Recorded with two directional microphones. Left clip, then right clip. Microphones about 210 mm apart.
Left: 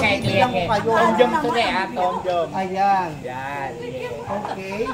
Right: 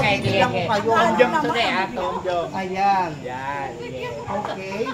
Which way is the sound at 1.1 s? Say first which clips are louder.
Left 1 dB; 15° left (ahead or behind).